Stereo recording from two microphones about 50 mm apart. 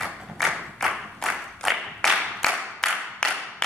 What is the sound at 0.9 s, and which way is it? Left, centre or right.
Clapping, centre.